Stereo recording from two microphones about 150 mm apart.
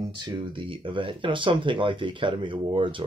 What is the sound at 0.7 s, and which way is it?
Speech, 35° right (ahead or behind).